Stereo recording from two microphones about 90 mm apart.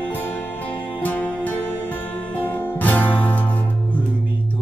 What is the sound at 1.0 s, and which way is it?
Music, 20° left (ahead or behind).